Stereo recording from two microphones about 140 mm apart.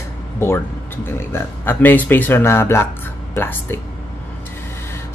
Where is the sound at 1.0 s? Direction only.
15° left (ahead or behind).